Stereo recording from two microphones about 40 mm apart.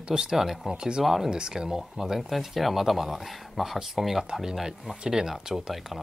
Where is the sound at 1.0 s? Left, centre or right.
Centre.